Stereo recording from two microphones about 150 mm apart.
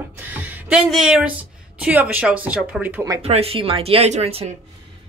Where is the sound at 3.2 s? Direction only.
40° right (ahead or behind).